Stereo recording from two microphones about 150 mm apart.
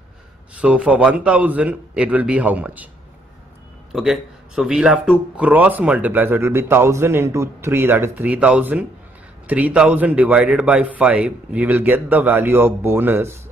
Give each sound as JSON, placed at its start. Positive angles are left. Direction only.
{"t": 0.6, "sound": "speech", "side_deg": -10}
{"t": 3.9, "sound": "speech", "side_deg": -5}